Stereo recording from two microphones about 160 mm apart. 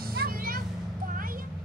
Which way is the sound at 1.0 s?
60° right (ahead or behind).